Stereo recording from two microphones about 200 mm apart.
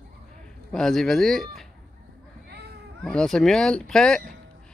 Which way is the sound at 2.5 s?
55° right (ahead or behind).